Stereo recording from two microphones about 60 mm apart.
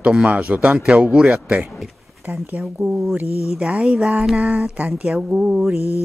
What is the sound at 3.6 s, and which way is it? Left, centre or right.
Speech, centre.